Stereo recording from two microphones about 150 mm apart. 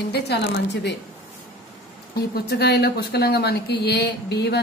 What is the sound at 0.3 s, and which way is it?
Speech, 90° left.